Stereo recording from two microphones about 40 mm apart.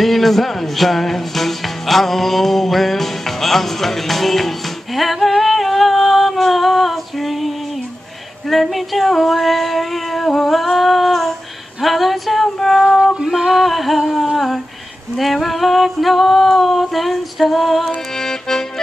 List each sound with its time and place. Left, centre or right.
0.0 s music: centre
8.5 s female singing: centre
12.5 s a sound: centre
13.0 s female singing: centre
13.3 s a sound: centre
14.2 s humming: centre
15.1 s female singing: centre
18.1 s accordion: centre